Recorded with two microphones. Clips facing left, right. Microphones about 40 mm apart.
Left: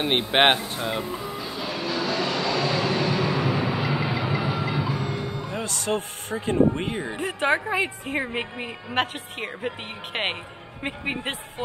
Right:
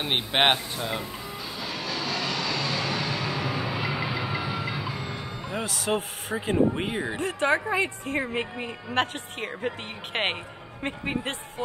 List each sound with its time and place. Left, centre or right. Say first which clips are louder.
0.0 s music: left 4 dB; centre
5.5 s speech: right 1 dB; centre
7.2 s speech: left 1 dB; centre
8.9 s speech: left 1 dB; centre
10.8 s speech: left 1 dB; centre